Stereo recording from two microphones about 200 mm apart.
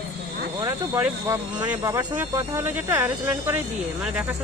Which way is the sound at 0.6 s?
15° right (ahead or behind).